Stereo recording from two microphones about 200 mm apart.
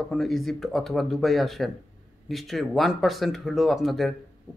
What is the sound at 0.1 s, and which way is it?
A man's voice, centre (ahead or behind).